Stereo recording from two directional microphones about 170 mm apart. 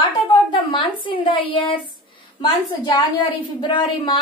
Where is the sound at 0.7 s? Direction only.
30° left (ahead or behind).